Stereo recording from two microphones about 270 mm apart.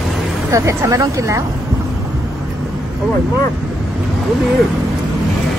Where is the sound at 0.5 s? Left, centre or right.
Centre.